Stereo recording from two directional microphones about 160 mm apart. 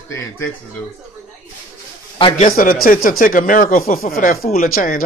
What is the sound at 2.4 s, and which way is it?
Speech, 60° left (ahead or behind).